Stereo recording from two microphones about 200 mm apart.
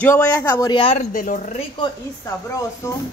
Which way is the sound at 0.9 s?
40° left (ahead or behind).